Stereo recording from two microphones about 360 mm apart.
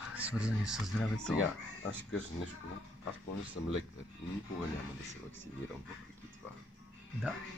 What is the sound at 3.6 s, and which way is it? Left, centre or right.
Speech, left.